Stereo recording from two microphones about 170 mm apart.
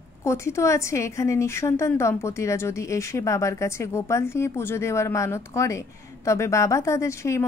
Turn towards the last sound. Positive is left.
turn(degrees=15)  # may be behind; listen again after turning